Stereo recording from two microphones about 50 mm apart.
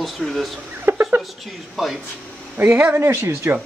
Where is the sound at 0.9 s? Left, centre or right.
Right.